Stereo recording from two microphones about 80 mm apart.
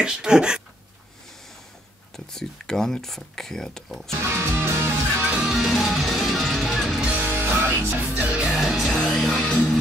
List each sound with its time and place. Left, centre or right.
0.0 s speech: centre
2.1 s speech: centre
4.3 s music: right
5.4 s music: centre
7.2 s music: right
8.1 s music: centre
8.5 s music: centre